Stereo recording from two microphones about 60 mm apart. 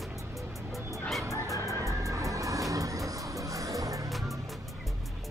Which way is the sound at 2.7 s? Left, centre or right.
Right.